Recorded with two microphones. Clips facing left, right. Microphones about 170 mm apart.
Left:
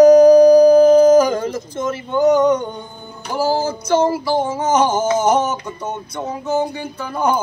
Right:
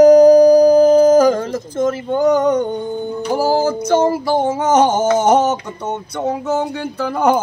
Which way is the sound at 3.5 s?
60° right (ahead or behind).